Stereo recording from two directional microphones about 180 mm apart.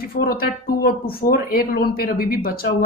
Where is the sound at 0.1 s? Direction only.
55° left (ahead or behind).